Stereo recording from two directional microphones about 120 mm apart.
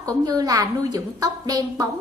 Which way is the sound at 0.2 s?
30° right (ahead or behind).